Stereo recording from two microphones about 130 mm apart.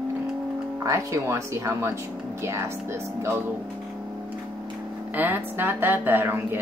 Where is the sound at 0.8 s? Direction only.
25° right (ahead or behind).